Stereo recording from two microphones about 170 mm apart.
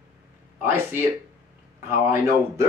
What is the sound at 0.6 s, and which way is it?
Speech, 15° right (ahead or behind).